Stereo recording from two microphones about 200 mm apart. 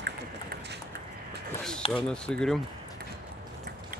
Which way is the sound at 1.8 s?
25° left (ahead or behind).